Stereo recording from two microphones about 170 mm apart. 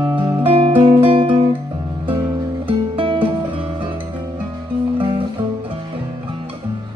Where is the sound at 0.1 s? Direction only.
30° right (ahead or behind).